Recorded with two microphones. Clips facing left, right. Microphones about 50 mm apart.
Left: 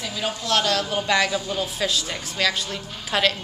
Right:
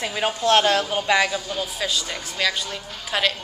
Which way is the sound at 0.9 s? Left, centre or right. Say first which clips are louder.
Right 1 dB; centre.